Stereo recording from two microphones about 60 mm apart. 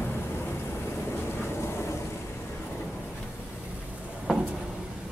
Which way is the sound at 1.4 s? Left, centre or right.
Left.